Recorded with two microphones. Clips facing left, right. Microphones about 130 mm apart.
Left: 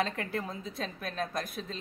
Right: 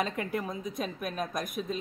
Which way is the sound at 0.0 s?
20° right (ahead or behind).